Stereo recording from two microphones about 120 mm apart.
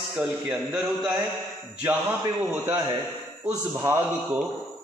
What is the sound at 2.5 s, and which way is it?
A man's voice, 15° right (ahead or behind).